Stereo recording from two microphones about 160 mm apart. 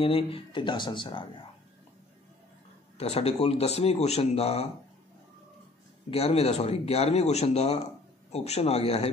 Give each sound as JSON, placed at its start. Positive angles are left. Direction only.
{"t": 0.0, "sound": "speech", "side_deg": 35}
{"t": 3.0, "sound": "speech", "side_deg": 40}
{"t": 6.0, "sound": "speech", "side_deg": 40}